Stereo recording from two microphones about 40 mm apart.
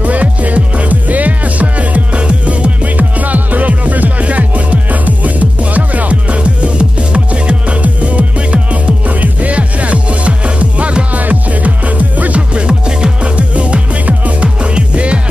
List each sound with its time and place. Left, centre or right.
0.0 s music: right
11.1 s music: right